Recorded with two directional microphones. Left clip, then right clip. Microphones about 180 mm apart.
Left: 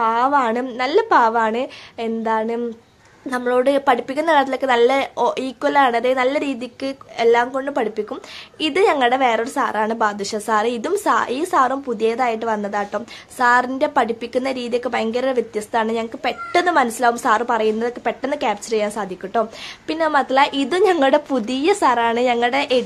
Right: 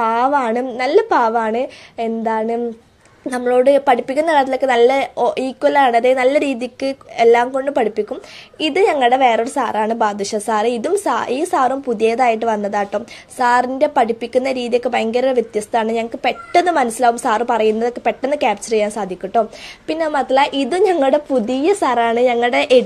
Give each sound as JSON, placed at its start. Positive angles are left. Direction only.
{"t": 0.0, "sound": "a woman's voice", "side_deg": -15}
{"t": 22.5, "sound": "a woman's voice", "side_deg": -20}